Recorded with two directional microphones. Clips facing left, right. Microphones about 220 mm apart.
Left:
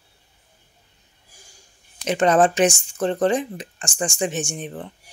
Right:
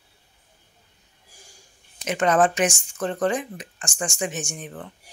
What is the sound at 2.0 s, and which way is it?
Speech, 30° left (ahead or behind).